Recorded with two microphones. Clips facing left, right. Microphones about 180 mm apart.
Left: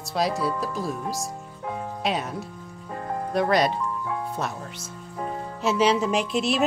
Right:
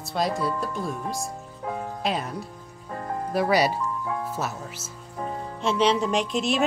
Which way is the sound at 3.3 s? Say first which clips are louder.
Even; 5° right (ahead or behind).